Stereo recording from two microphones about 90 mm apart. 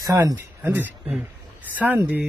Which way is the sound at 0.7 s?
20° right (ahead or behind).